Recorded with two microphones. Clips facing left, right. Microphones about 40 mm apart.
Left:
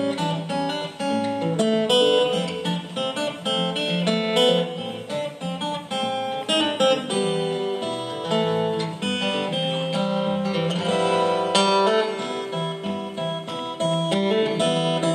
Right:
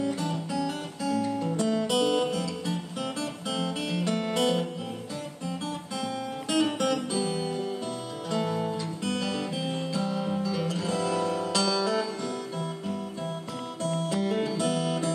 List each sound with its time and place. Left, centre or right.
0.0 s music: left
5.9 s music: left
13.8 s music: left